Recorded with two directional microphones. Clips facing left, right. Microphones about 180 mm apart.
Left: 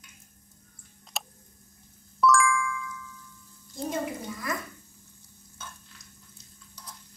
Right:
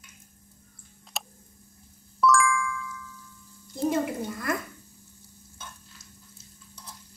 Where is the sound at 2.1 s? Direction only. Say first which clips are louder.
Even; centre (ahead or behind).